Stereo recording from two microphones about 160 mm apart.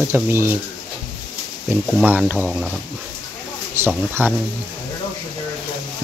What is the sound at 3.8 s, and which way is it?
Speech, 15° right (ahead or behind).